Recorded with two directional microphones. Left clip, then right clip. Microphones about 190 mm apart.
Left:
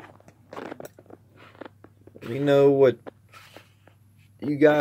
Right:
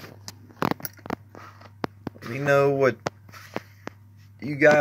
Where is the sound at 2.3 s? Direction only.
20° left (ahead or behind).